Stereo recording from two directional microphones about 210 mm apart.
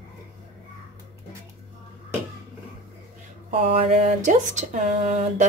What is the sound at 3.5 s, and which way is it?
Mantra, 25° right (ahead or behind).